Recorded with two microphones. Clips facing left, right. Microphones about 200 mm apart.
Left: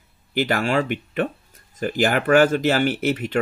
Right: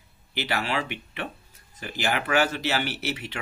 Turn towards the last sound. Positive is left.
turn(degrees=50)  # may be behind; listen again after turning